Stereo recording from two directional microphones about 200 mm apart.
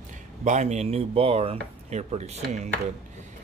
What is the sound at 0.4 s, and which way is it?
Speech, 35° right (ahead or behind).